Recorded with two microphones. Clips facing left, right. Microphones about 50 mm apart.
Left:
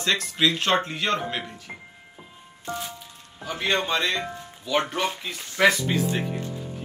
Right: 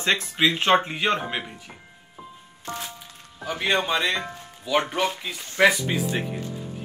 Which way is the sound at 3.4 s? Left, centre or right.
Centre.